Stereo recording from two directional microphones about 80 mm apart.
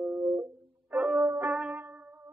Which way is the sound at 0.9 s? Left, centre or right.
Centre.